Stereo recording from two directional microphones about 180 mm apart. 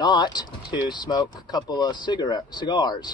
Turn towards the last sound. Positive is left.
turn(degrees=25)  # may be behind; listen again after turning